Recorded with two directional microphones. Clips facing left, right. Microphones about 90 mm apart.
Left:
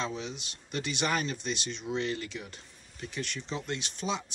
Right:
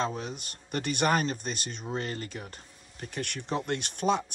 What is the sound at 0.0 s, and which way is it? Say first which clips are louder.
Speech: right 3 dB; 45° right (ahead or behind).